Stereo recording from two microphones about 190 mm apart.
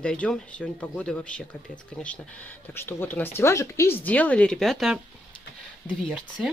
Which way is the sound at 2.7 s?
10° left (ahead or behind).